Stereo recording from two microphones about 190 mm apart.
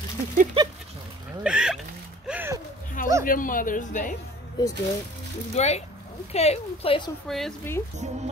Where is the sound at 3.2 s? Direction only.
45° left (ahead or behind).